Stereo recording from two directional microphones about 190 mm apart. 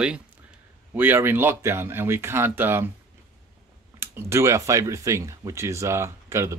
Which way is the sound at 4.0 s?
15° right (ahead or behind).